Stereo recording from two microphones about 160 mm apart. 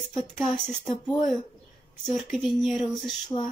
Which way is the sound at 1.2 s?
50° left (ahead or behind).